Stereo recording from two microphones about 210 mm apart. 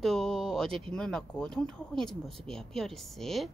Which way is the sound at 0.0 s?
Centre (ahead or behind).